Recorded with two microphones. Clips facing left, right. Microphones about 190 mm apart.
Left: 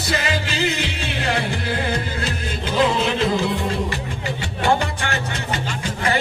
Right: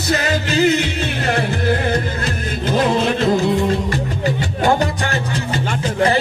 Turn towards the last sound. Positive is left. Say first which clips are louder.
# right 4 dB
turn(degrees=-35)  # may be behind; listen again after turning